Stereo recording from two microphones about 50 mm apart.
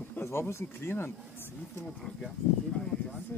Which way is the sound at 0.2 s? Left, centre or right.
Left.